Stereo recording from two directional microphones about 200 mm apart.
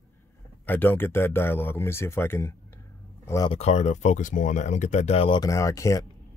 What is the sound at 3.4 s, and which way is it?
Speech, 30° left (ahead or behind).